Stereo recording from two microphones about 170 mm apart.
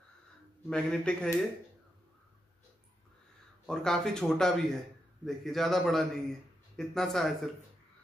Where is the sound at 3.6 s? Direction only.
5° left (ahead or behind).